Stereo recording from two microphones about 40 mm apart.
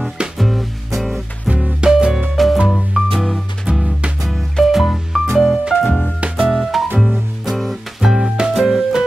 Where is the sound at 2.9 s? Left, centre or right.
Centre.